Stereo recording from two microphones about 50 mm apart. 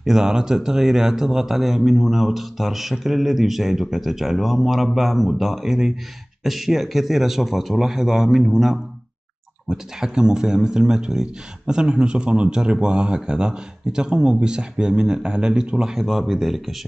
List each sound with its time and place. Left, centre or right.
0.0 s speech: centre